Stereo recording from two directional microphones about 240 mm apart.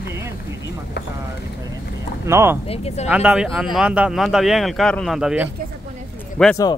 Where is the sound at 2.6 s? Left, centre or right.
Left.